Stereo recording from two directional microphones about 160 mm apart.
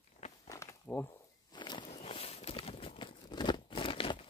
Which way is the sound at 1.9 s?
40° left (ahead or behind).